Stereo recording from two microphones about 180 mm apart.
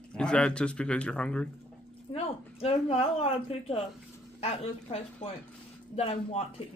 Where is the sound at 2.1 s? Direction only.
35° left (ahead or behind).